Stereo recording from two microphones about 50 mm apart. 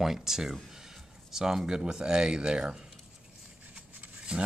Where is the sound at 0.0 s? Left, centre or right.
Centre.